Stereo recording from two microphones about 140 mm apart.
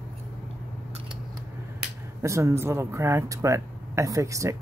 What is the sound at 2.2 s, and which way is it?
Speech, 20° right (ahead or behind).